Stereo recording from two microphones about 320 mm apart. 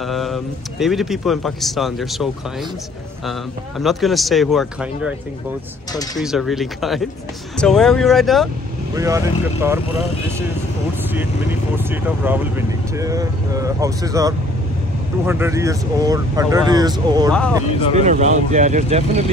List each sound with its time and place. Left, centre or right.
0.0 s a man's voice: centre
3.8 s a man's voice: centre
6.1 s a man's voice: centre
11.1 s speech: centre
17.3 s a man's voice: centre
17.9 s speech: right